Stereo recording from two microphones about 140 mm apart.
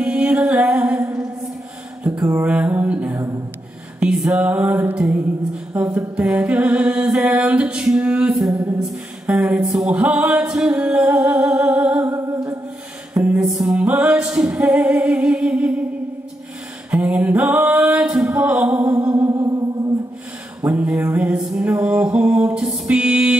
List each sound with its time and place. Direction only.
0.0 s music: 5° right (ahead or behind)
8.7 s a capella: 5° right (ahead or behind)
12.0 s humming: 20° right (ahead or behind)
13.1 s a capella: 10° right (ahead or behind)
16.9 s music: 10° right (ahead or behind)
20.6 s music: 10° right (ahead or behind)